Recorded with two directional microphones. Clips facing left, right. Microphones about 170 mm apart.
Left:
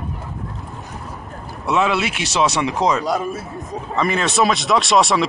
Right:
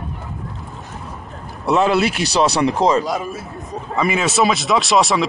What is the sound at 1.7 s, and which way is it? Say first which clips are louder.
Speech: right 3 dB; 40° right (ahead or behind).